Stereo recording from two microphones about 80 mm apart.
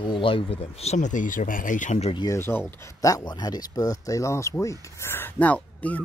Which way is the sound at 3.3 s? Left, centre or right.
Left.